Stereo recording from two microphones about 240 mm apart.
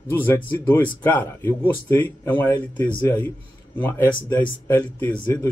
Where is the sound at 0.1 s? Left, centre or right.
Centre.